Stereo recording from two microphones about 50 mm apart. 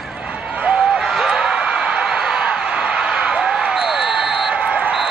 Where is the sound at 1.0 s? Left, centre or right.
Centre.